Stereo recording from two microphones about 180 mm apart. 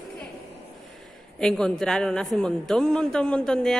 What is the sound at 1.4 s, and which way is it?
A man's voice, 5° left (ahead or behind).